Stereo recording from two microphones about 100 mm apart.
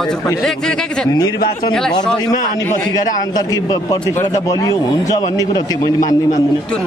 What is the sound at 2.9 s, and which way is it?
Speech, 40° left (ahead or behind).